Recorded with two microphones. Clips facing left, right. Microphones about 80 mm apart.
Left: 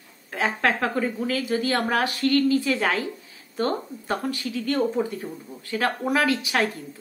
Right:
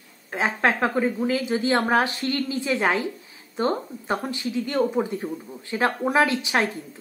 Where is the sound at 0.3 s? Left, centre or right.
Right.